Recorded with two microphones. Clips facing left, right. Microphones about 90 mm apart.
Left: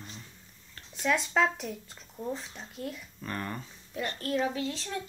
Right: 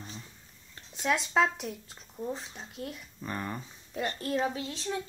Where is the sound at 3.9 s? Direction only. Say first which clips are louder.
Even; 25° right (ahead or behind).